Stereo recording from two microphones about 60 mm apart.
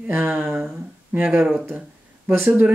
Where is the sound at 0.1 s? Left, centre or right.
Right.